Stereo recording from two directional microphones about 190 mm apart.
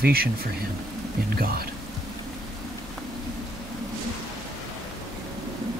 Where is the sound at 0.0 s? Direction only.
50° right (ahead or behind).